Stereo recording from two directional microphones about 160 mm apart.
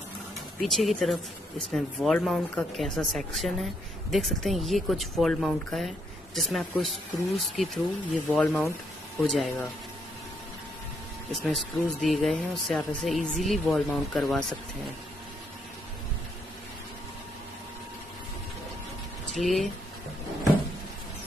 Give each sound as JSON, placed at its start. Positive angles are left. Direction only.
{"t": 0.6, "sound": "speech", "side_deg": 0}
{"t": 11.3, "sound": "speech", "side_deg": 0}
{"t": 19.3, "sound": "speech", "side_deg": 0}